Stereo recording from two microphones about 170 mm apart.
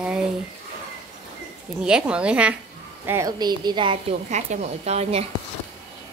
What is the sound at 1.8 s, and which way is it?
Speech, 5° right (ahead or behind).